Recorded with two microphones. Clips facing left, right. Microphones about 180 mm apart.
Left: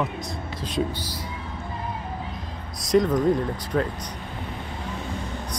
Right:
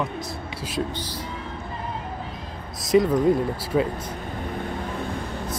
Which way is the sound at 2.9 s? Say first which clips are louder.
Right 1 dB; 5° right (ahead or behind).